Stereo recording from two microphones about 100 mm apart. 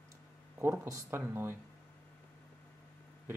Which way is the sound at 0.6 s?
25° right (ahead or behind).